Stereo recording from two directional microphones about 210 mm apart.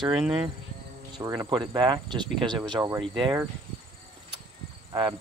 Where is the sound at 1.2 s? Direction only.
15° right (ahead or behind).